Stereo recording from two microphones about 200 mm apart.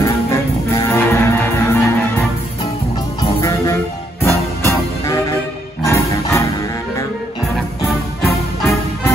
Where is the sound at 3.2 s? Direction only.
15° left (ahead or behind).